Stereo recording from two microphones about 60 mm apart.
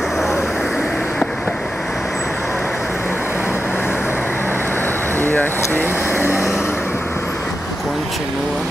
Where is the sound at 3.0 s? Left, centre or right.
Left.